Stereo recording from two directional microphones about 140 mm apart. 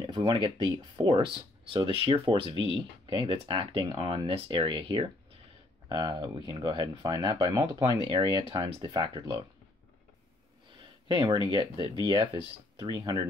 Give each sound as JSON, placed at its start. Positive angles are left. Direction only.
{"t": 0.0, "sound": "speech", "side_deg": -30}
{"t": 10.8, "sound": "a sound", "side_deg": -35}
{"t": 12.8, "sound": "speech", "side_deg": -25}